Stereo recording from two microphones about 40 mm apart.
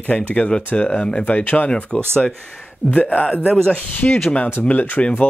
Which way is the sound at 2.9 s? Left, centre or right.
Left.